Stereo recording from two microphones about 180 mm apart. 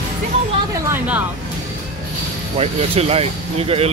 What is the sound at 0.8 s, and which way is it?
Speech, 10° right (ahead or behind).